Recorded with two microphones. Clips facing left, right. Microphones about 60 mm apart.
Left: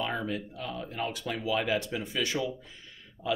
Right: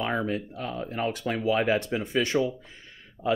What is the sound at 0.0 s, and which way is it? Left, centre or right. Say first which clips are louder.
Speech: right 4 dB; right.